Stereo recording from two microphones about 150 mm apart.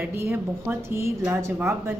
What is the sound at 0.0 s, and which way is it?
A woman's voice, 15° right (ahead or behind).